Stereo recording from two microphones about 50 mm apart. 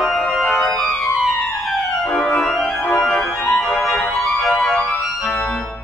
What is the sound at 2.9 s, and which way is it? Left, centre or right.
Music, centre.